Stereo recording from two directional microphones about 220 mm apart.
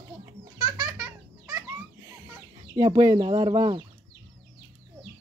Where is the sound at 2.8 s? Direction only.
20° right (ahead or behind).